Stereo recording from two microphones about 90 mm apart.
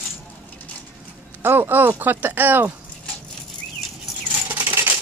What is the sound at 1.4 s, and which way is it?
Speech, 25° right (ahead or behind).